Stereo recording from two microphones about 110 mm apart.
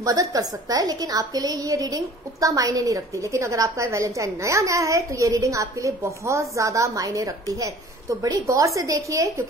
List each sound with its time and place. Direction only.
0.0 s a woman's voice: 30° right (ahead or behind)